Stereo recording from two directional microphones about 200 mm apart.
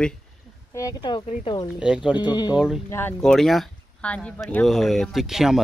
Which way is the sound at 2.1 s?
20° left (ahead or behind).